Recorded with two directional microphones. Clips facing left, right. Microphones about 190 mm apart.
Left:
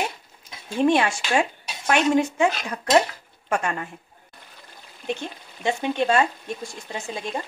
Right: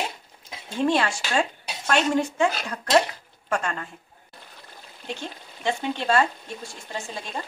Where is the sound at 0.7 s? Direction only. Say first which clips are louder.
Left 3 dB; 20° left (ahead or behind).